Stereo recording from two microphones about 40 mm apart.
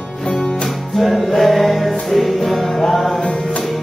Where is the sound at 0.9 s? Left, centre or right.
Centre.